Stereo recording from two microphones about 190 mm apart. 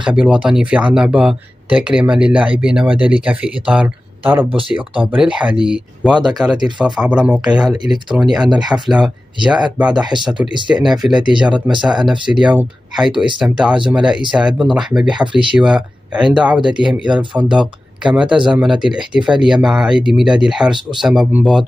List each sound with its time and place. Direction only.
0.0 s speech: 5° right (ahead or behind)
10.0 s speech: 25° right (ahead or behind)
10.7 s speech: centre (ahead or behind)
17.1 s speech: 25° right (ahead or behind)
17.4 s speech: 5° right (ahead or behind)